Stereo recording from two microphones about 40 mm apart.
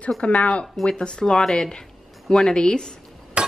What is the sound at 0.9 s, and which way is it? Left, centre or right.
A woman's voice, left.